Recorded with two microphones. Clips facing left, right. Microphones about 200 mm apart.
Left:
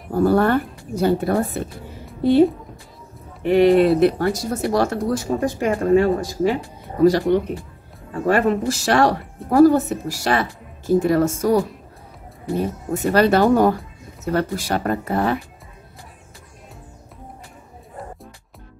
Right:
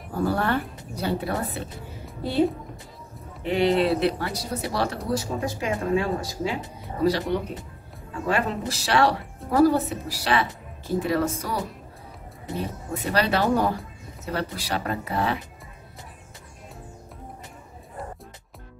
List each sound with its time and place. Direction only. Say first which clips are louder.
0.1 s speech: left 8 dB; 45° left (ahead or behind)
3.4 s speech: left 7 dB; 55° left (ahead or behind)